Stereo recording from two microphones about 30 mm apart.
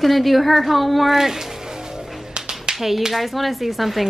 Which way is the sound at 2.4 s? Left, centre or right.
Right.